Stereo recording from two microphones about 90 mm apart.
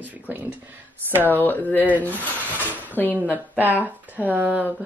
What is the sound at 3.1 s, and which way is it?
Speech, 20° right (ahead or behind).